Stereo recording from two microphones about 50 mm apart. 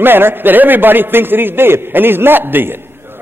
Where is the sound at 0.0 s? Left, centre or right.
Right.